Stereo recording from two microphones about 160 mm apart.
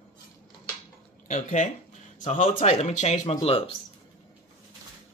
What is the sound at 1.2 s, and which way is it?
Speech, 50° left (ahead or behind).